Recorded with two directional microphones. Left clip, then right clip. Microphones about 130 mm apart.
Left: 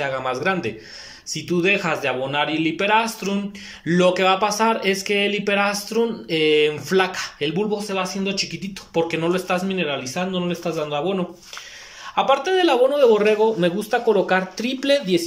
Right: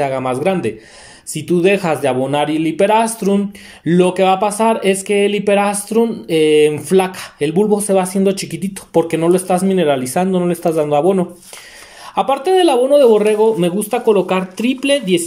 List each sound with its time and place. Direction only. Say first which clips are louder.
0.0 s speech: right 6 dB; 35° right (ahead or behind)
7.5 s speech: right 12 dB; 60° right (ahead or behind)
12.2 s a man's voice: right 5 dB; 35° right (ahead or behind); by 15.2 s 20° right (ahead or behind)